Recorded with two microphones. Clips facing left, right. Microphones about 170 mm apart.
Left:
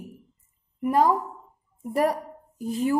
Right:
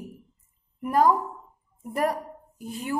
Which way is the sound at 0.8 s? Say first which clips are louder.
Even; 25° left (ahead or behind).